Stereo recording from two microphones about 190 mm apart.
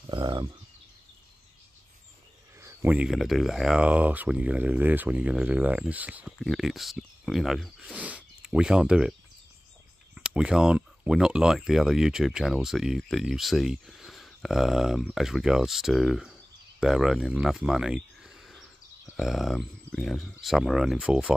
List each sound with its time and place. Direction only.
0.0 s speech: 25° right (ahead or behind)
2.6 s speech: 10° right (ahead or behind)
10.1 s speech: 5° right (ahead or behind)